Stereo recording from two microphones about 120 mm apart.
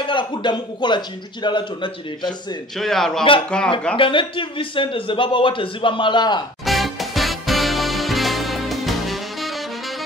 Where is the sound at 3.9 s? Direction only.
45° left (ahead or behind).